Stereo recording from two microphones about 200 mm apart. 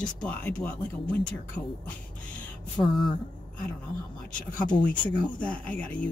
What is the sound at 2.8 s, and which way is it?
Speech, centre (ahead or behind).